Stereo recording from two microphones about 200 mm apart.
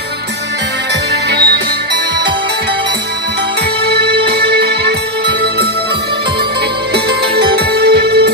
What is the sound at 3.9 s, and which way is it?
Music, 55° right (ahead or behind).